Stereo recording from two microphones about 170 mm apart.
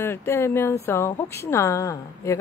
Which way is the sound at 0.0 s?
15° left (ahead or behind).